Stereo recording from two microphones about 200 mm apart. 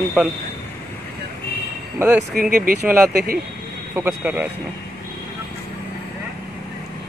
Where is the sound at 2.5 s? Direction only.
45° right (ahead or behind).